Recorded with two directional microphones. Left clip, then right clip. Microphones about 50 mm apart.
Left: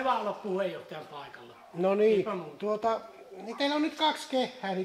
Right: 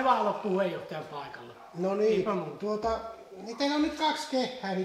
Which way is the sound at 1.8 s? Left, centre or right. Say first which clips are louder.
Left 2 dB; centre.